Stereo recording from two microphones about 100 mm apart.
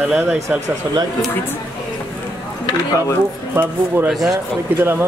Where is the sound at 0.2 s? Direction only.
20° right (ahead or behind).